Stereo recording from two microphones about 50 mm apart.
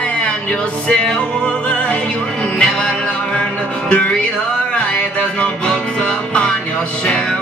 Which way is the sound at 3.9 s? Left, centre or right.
Left.